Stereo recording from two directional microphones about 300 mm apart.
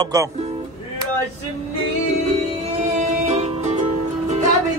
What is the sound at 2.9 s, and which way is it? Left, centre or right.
Music, right.